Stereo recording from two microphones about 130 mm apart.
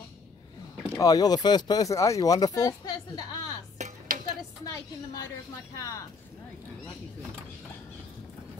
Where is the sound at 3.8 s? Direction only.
70° right (ahead or behind).